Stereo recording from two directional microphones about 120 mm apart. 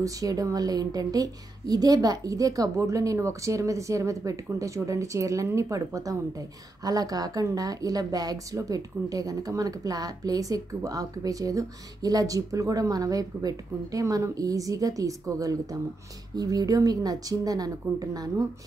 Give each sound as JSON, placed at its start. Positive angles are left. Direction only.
{"t": 0.0, "sound": "a woman's voice", "side_deg": -30}